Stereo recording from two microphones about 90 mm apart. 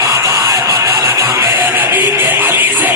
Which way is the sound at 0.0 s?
35° right (ahead or behind).